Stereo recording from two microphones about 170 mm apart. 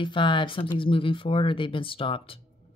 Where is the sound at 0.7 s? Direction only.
30° left (ahead or behind).